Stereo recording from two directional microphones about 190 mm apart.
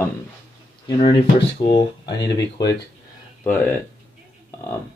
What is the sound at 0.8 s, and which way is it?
Speech, 25° left (ahead or behind).